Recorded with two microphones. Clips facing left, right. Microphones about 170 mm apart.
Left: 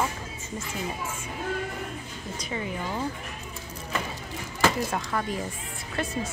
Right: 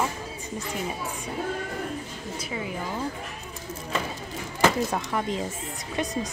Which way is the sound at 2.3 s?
5° right (ahead or behind).